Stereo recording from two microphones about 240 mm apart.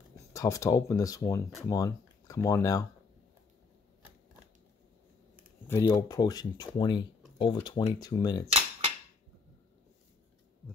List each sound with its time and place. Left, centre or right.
0.3 s speech: centre
5.7 s speech: centre